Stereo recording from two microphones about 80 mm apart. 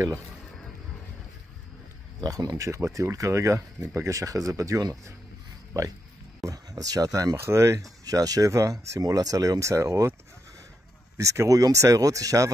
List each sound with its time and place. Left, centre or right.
2.1 s speech: right
7.3 s speech: right
8.0 s speech: right
11.1 s speech: right